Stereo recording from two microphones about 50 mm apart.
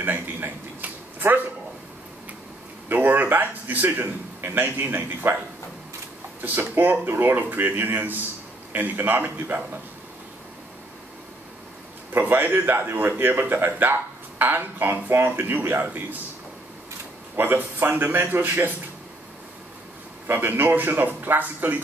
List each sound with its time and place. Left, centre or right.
0.0 s a sound: right
2.9 s a man's voice: right
6.4 s speech: right
12.1 s a man's voice: right
17.4 s a man's voice: right
20.3 s speech: right